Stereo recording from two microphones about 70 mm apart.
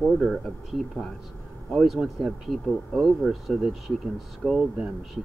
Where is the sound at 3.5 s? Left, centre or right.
Centre.